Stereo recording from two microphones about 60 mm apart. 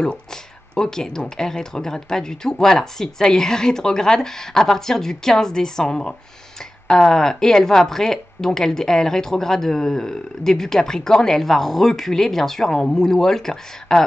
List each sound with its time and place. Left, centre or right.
0.0 s a woman's voice: centre